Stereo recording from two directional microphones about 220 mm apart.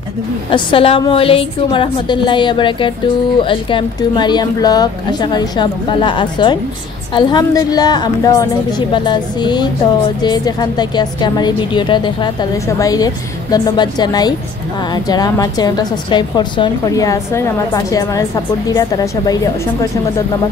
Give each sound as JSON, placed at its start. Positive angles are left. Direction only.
{"t": 0.5, "sound": "a woman's voice", "side_deg": 25}